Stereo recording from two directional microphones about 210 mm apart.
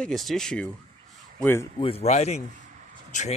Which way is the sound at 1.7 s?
25° left (ahead or behind).